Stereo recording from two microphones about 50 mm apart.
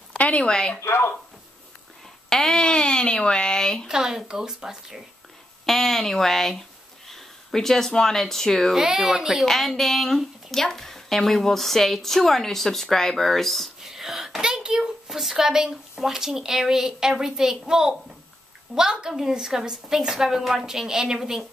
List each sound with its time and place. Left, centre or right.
0.2 s speech: left
0.7 s speech: left
2.2 s speech: centre
3.8 s a woman's voice: centre
5.7 s speech: centre
8.7 s a woman's voice: centre
9.5 s speech: centre
13.8 s a child's voice: centre